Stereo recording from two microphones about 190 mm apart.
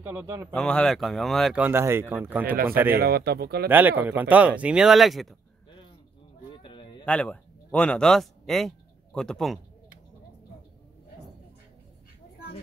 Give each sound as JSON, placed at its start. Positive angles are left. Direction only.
{"t": 0.0, "sound": "speech", "side_deg": -10}
{"t": 0.5, "sound": "speech", "side_deg": 5}
{"t": 2.9, "sound": "speech", "side_deg": -55}
{"t": 3.6, "sound": "speech", "side_deg": -10}
{"t": 6.5, "sound": "a sound", "side_deg": 25}
{"t": 7.1, "sound": "speech", "side_deg": 5}